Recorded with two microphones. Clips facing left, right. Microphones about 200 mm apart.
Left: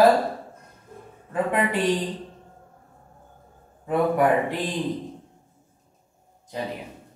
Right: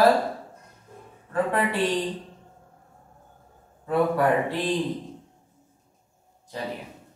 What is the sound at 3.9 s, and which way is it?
Speech, 15° left (ahead or behind).